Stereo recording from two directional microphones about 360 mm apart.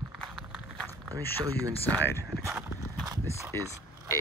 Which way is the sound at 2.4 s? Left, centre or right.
Centre.